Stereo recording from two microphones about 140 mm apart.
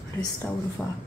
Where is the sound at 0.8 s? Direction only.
10° left (ahead or behind).